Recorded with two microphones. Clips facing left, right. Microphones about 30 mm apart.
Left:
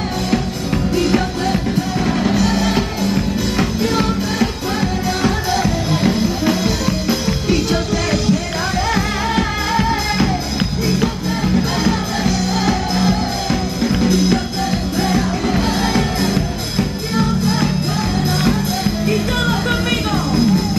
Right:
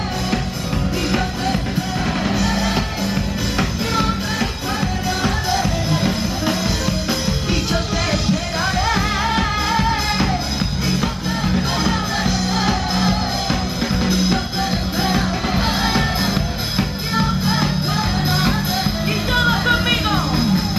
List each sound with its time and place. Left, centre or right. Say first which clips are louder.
0.9 s music: left 5 dB; centre